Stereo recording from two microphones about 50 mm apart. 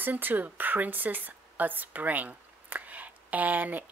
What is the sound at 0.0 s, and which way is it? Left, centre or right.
Speech, right.